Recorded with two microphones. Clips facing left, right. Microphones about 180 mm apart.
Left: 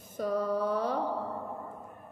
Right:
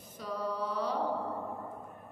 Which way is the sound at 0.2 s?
50° left (ahead or behind).